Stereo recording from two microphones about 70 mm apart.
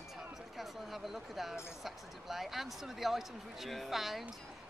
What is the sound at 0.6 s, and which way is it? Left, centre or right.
Speech, centre.